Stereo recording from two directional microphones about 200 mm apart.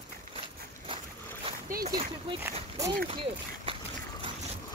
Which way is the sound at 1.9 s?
25° right (ahead or behind).